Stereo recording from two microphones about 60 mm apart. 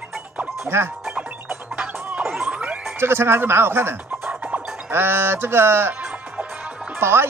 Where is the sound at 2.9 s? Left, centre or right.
Right.